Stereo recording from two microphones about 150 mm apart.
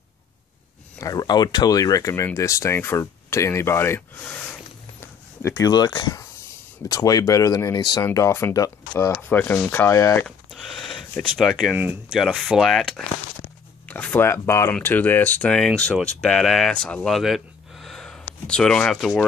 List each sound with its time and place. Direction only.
0.9 s speech: 25° left (ahead or behind)
10.2 s speech: centre (ahead or behind)
12.2 s speech: centre (ahead or behind)